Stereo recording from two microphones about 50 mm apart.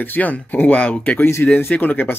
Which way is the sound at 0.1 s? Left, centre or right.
Left.